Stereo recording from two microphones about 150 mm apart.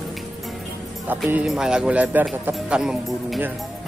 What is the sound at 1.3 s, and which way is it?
Speech, 5° right (ahead or behind).